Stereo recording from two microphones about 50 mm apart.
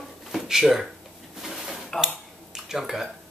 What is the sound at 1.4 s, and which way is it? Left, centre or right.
Dishes, centre.